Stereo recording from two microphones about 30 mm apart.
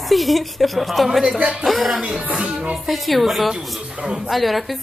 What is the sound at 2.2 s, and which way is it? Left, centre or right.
Music, right.